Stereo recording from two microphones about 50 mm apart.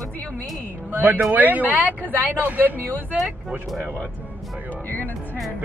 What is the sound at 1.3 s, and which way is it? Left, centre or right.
Speech, right.